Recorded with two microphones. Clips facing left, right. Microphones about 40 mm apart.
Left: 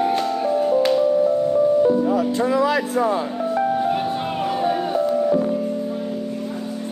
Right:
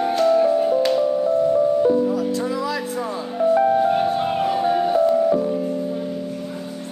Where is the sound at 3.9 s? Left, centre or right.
Centre.